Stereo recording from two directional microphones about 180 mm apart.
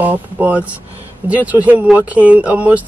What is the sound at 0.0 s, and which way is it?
Speech, 10° right (ahead or behind).